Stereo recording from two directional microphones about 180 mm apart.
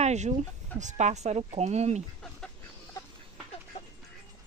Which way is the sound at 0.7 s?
40° right (ahead or behind).